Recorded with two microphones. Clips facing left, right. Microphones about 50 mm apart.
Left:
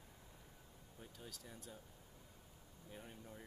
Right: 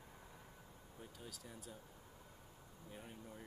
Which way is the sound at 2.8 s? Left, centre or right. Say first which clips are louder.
Right 1 dB; centre.